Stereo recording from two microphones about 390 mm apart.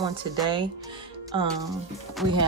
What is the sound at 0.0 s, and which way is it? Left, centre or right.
Speech, centre.